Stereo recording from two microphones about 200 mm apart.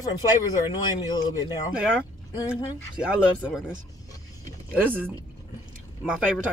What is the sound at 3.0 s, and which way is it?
Speech, 5° right (ahead or behind).